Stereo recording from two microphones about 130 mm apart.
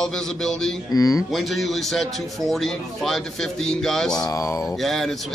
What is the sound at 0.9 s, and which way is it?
Speech, 25° left (ahead or behind).